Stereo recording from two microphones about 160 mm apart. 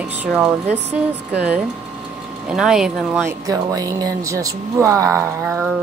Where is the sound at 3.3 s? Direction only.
20° right (ahead or behind).